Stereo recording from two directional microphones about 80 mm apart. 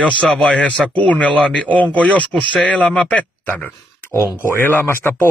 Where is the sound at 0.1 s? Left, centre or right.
Centre.